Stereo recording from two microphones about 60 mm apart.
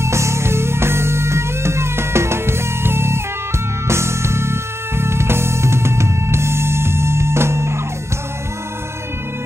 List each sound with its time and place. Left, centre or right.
0.0 s music: right